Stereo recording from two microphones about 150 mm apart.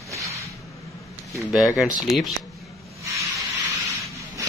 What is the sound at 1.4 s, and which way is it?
Speech, 5° right (ahead or behind).